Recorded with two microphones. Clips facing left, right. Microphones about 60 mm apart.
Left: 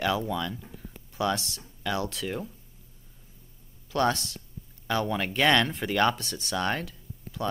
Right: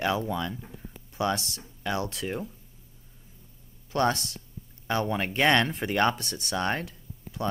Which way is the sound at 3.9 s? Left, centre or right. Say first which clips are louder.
Even; right.